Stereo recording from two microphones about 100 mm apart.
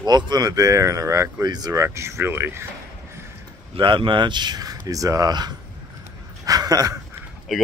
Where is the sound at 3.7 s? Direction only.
55° right (ahead or behind).